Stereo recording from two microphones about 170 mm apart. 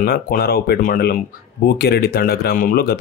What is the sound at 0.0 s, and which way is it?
Speech, 60° left (ahead or behind).